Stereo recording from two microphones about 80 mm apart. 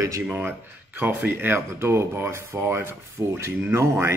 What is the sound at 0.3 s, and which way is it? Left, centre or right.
Speech, right.